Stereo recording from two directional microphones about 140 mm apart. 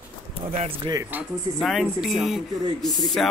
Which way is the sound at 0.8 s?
25° right (ahead or behind).